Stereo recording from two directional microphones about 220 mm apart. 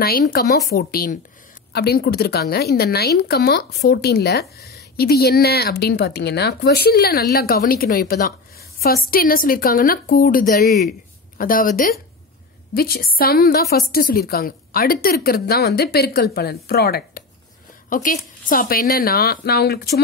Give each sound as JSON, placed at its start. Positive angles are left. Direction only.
{"t": 0.0, "sound": "a woman's voice", "side_deg": 45}